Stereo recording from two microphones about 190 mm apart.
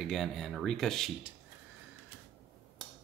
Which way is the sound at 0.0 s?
Centre (ahead or behind).